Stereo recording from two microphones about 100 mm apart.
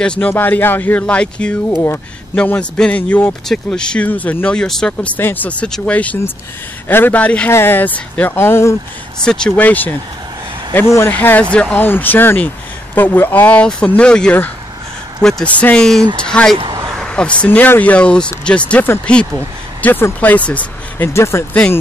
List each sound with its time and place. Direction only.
0.0 s speech: 10° left (ahead or behind)
0.3 s speech: 20° left (ahead or behind); by 5.1 s 5° left (ahead or behind)
5.1 s speech: 20° left (ahead or behind)
9.2 s speech: 10° left (ahead or behind)
21.1 s speech: 30° left (ahead or behind)